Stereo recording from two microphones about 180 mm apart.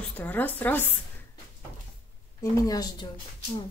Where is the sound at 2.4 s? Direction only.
20° left (ahead or behind).